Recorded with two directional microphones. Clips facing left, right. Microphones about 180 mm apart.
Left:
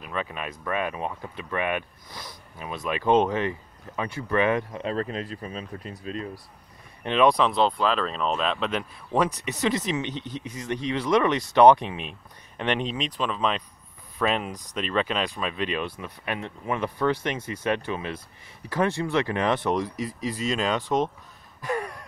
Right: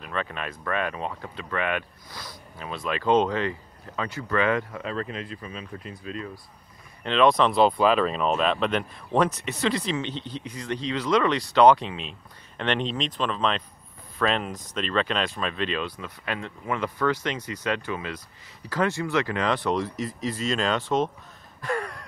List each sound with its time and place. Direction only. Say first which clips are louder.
0.0 s speech: even; 10° left (ahead or behind)
4.8 s speech: left 3 dB; 35° left (ahead or behind)
7.0 s speech: even; 15° left (ahead or behind)
7.5 s speech: right 3 dB; 10° right (ahead or behind); by 21.1 s 15° left (ahead or behind)
21.5 s gasp: even; 15° left (ahead or behind)